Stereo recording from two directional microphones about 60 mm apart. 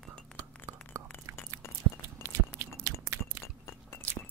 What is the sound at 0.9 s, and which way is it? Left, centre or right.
Whispering, right.